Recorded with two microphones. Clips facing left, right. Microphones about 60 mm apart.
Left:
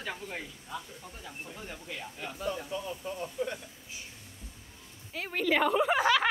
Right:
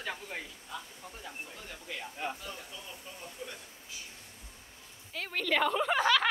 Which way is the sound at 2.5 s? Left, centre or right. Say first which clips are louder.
Left 10 dB; left.